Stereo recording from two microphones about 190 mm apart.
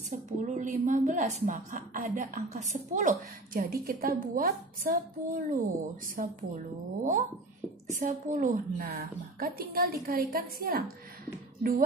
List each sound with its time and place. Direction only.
0.5 s a woman's voice: 40° right (ahead or behind)